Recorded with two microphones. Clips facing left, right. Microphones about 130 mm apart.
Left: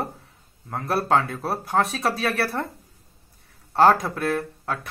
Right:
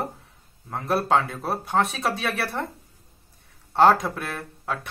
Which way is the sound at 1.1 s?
25° right (ahead or behind).